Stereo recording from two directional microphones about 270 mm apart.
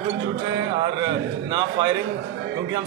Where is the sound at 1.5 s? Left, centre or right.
Centre.